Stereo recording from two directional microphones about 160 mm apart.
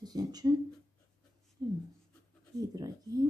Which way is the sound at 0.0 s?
25° right (ahead or behind).